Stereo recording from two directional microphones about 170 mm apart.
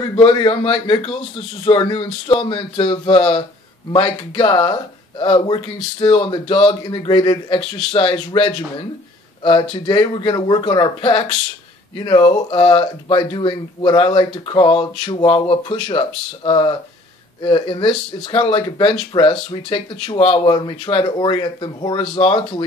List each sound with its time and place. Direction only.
0.1 s a man's voice: 30° left (ahead or behind)